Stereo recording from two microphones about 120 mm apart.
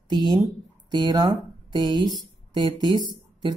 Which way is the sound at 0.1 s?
40° right (ahead or behind).